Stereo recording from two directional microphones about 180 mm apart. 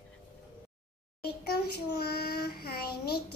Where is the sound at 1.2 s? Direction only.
60° left (ahead or behind).